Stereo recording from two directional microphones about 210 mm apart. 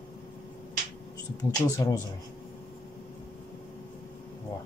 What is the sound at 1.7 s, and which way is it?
Speech, 15° left (ahead or behind).